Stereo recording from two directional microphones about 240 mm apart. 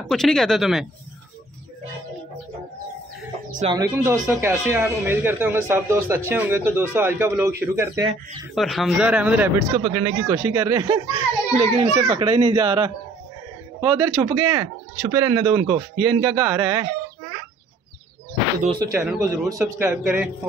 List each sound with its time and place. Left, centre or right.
0.1 s speech: centre
3.6 s speech: centre
8.5 s speech: centre
11.5 s a child's voice: right
16.1 s speech: centre
18.6 s a child's voice: right
18.9 s speech: centre